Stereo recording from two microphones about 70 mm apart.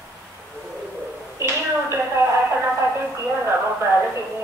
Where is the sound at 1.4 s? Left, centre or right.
Right.